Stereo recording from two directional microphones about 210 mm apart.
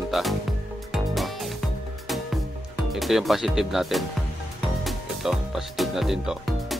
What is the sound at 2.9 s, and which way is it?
Speech, centre (ahead or behind).